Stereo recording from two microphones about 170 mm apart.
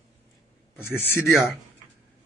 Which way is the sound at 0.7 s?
10° left (ahead or behind).